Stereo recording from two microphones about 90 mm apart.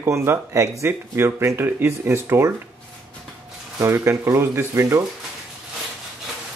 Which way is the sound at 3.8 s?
35° right (ahead or behind).